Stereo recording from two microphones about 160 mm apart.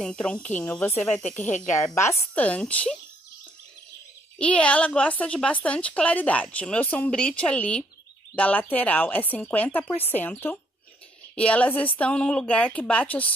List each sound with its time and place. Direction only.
0.0 s a woman's voice: 5° left (ahead or behind)
1.4 s speech: 50° left (ahead or behind)
1.7 s a woman's voice: 15° left (ahead or behind)
4.4 s a woman's voice: 5° left (ahead or behind)